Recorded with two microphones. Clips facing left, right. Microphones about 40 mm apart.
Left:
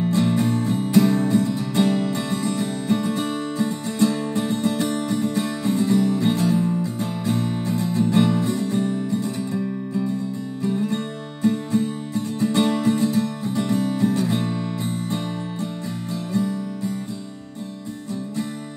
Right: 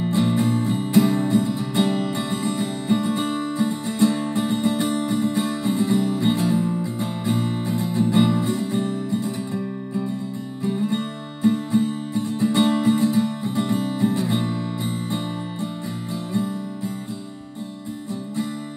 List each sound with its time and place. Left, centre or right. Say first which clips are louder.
0.0 s music: even; centre